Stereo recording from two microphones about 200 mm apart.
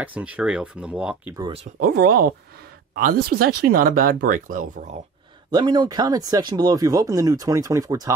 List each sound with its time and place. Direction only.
0.0 s speech: 5° right (ahead or behind)
1.8 s speech: 50° right (ahead or behind)
5.5 s speech: 20° right (ahead or behind)